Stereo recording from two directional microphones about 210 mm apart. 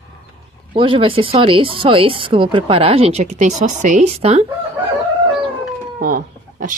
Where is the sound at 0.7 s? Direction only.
25° right (ahead or behind).